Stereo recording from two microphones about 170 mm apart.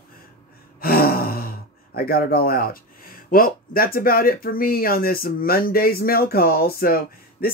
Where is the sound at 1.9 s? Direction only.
60° left (ahead or behind).